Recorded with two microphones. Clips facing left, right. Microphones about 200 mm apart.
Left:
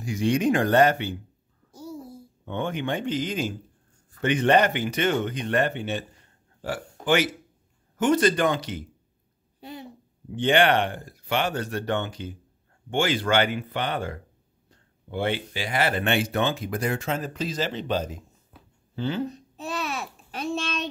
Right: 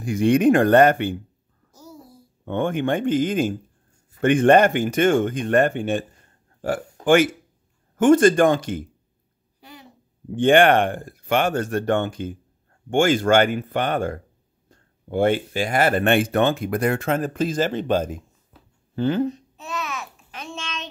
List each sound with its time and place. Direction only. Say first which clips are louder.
0.0 s speech: right 6 dB; 55° right (ahead or behind)
1.8 s a sound: left 6 dB; 25° left (ahead or behind)
2.4 s speech: right 6 dB; 50° right (ahead or behind)
9.6 s a sound: left 6 dB; 25° left (ahead or behind)
10.3 s speech: right 6 dB; 50° right (ahead or behind)
19.5 s babbling: even; 35° left (ahead or behind)